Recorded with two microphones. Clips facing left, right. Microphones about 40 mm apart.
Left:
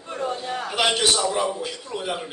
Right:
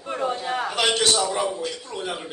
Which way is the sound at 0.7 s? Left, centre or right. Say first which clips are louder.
Left 1 dB; centre.